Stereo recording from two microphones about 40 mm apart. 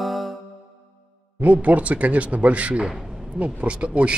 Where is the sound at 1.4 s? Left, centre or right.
Right.